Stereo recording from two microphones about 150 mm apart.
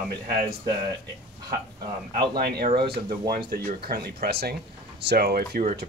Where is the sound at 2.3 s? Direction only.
90° right.